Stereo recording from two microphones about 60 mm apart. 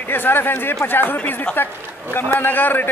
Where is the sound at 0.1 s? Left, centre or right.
Left.